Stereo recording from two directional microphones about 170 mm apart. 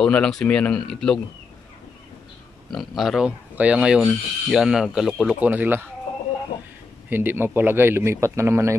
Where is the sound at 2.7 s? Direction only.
Centre (ahead or behind).